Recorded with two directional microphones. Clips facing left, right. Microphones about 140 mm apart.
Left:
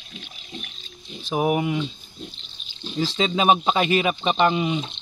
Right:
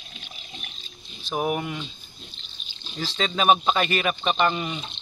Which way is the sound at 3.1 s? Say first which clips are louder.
Left 1 dB; 15° left (ahead or behind).